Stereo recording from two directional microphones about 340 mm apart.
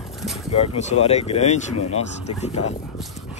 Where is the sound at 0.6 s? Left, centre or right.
Centre.